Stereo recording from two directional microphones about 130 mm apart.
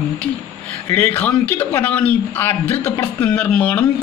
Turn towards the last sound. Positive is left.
turn(degrees=10)  # may be behind; listen again after turning